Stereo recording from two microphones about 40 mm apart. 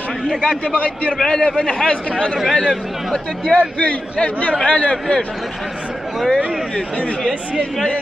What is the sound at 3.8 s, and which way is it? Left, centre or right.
A man's voice, left.